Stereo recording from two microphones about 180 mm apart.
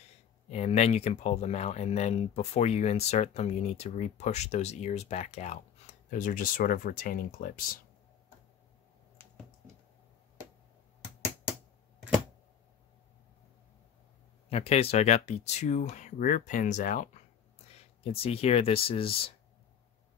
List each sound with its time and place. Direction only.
0.5 s speech: 35° left (ahead or behind)
14.5 s speech: 35° left (ahead or behind)
18.0 s speech: 35° left (ahead or behind)